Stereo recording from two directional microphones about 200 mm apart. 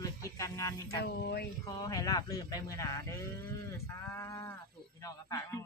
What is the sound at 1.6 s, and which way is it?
Speech, 20° left (ahead or behind).